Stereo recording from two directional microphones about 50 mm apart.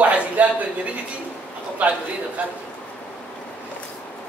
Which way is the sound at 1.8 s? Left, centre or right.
Right.